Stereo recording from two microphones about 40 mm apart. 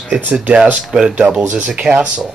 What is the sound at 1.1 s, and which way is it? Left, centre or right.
Speech, right.